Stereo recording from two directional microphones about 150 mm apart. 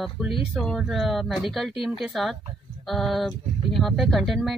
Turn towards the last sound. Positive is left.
turn(degrees=0)  # may be behind; listen again after turning